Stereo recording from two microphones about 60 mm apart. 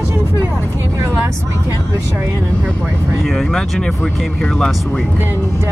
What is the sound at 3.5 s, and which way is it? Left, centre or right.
A man's voice, centre.